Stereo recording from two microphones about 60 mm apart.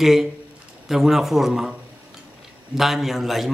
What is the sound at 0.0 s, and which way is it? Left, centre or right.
A man's voice, centre.